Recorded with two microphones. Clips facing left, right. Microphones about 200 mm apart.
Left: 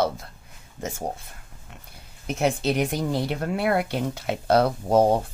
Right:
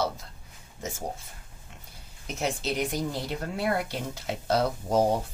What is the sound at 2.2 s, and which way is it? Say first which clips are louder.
Speech: left 7 dB; 60° left (ahead or behind).